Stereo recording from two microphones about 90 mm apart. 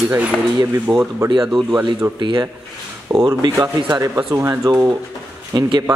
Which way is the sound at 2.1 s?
60° right (ahead or behind).